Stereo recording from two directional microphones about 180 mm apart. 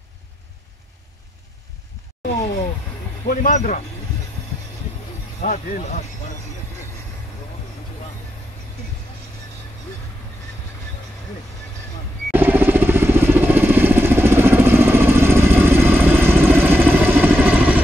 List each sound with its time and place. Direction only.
3.3 s speech: 50° left (ahead or behind)
5.4 s speech: 45° left (ahead or behind)
12.3 s vehicle: 10° right (ahead or behind)